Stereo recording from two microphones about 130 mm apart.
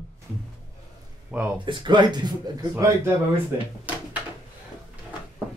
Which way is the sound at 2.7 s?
20° right (ahead or behind).